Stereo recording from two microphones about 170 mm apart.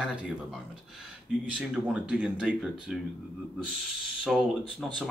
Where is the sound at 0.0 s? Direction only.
5° right (ahead or behind).